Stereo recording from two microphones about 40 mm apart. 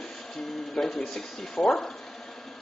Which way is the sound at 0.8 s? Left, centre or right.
Centre.